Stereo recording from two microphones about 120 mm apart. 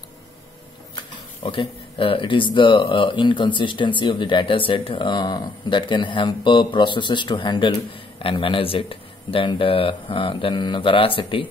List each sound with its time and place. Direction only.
1.4 s speech: 45° left (ahead or behind)